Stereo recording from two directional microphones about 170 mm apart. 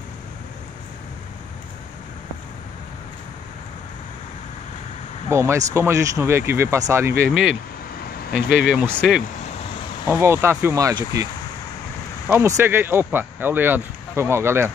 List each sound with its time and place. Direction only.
5.3 s speech: 15° right (ahead or behind)
7.2 s speech: 5° right (ahead or behind)
10.0 s speech: 15° right (ahead or behind)
12.3 s speech: 10° right (ahead or behind)